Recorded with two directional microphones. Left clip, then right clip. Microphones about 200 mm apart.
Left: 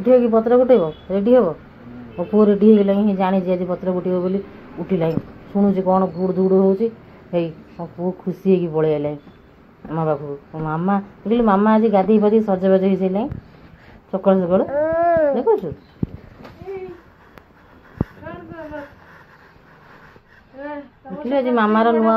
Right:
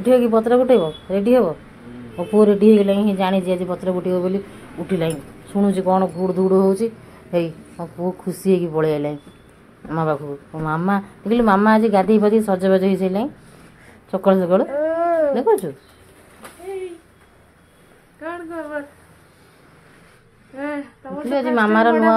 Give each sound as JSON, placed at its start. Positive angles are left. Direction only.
{"t": 0.0, "sound": "a woman's voice", "side_deg": -15}
{"t": 14.7, "sound": "a sound", "side_deg": -10}
{"t": 21.3, "sound": "speech", "side_deg": -5}